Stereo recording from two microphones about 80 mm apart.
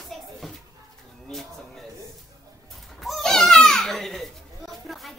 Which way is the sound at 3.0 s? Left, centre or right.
Centre.